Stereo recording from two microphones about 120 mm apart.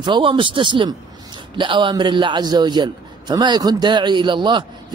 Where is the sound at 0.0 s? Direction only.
45° right (ahead or behind).